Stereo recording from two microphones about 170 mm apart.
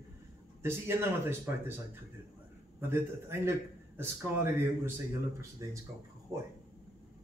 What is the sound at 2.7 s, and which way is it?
Speech, 15° right (ahead or behind).